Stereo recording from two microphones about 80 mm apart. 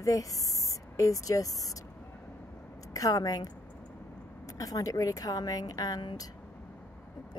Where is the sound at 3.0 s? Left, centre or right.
Left.